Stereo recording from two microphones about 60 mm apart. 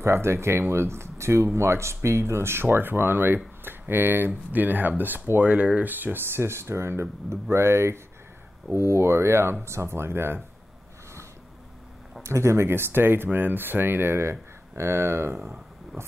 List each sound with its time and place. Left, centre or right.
0.0 s speech: right
12.2 s speech: right